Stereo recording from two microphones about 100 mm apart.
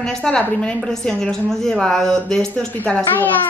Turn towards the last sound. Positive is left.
turn(degrees=20)  # may be behind; listen again after turning